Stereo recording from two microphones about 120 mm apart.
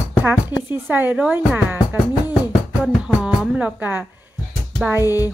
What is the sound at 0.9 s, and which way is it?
Speech, 15° right (ahead or behind).